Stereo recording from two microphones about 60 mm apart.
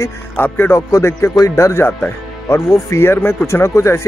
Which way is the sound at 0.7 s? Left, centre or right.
Left.